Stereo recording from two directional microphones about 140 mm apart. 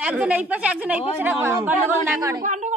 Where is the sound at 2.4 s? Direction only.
60° right (ahead or behind).